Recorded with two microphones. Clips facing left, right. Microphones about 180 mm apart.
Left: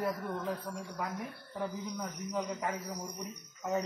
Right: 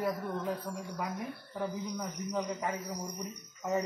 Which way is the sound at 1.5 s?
10° right (ahead or behind).